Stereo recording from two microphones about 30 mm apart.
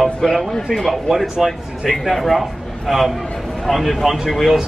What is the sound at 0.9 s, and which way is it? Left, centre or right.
Speech, centre.